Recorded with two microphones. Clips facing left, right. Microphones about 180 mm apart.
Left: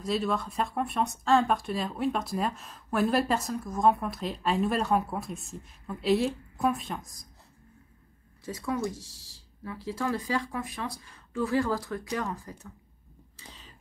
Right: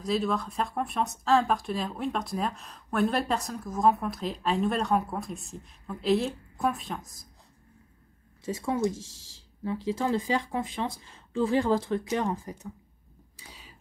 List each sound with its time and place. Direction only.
0.0 s speech: centre (ahead or behind)
8.5 s speech: 25° right (ahead or behind)
13.4 s a sound: 10° right (ahead or behind)